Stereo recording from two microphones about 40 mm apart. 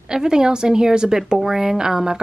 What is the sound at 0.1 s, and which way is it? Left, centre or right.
A woman's voice, centre.